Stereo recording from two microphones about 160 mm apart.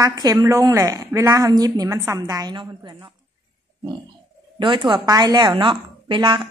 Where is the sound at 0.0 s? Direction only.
25° right (ahead or behind).